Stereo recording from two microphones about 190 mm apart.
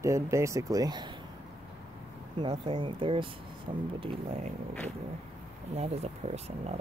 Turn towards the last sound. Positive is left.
turn(degrees=-35)  # may be behind; listen again after turning